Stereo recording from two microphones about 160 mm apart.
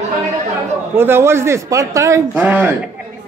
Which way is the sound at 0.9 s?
15° right (ahead or behind).